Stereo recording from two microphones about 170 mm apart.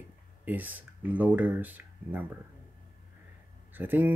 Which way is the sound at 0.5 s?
10° right (ahead or behind).